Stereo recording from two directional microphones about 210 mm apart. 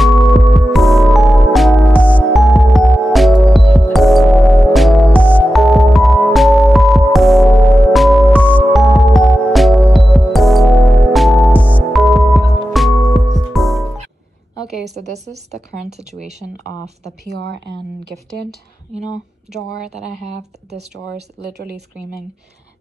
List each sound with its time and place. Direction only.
0.0 s music: centre (ahead or behind)
15.0 s speech: 30° right (ahead or behind)
21.4 s speech: 50° right (ahead or behind)